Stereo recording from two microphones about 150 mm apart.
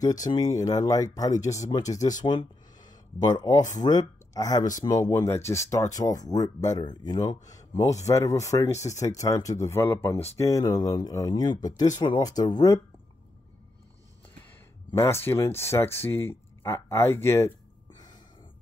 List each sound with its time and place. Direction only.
0.0 s speech: 25° left (ahead or behind)
2.2 s a sound: 30° left (ahead or behind)
3.7 s speech: 25° left (ahead or behind)
14.9 s speech: 20° left (ahead or behind)
17.9 s gasp: 25° left (ahead or behind)